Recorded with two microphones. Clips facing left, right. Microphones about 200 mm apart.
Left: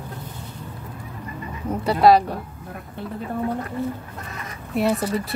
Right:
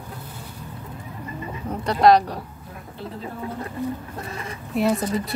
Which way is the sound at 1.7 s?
5° left (ahead or behind).